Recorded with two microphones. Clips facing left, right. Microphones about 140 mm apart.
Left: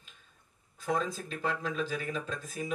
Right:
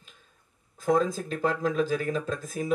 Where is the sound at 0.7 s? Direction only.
40° right (ahead or behind).